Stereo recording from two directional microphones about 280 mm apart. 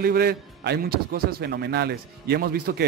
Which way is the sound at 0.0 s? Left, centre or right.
Right.